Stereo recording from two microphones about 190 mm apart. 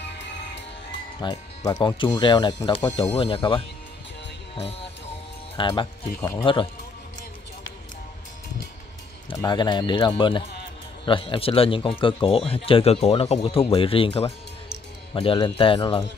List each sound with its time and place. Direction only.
1.2 s speech: 20° left (ahead or behind)
4.6 s music: 30° left (ahead or behind)
5.6 s speech: 25° left (ahead or behind)
9.3 s speech: 25° left (ahead or behind)